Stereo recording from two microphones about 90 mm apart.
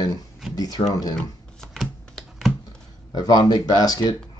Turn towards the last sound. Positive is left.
turn(degrees=45)  # may be behind; listen again after turning